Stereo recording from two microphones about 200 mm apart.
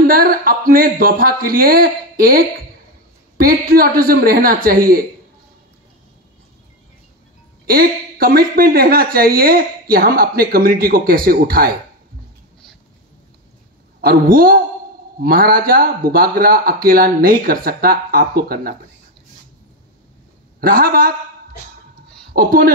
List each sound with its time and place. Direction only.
0.0 s speech: 45° right (ahead or behind)
7.6 s speech: 45° right (ahead or behind)
14.0 s speech: 45° right (ahead or behind)
20.6 s speech: 45° right (ahead or behind)
22.3 s speech: 45° right (ahead or behind)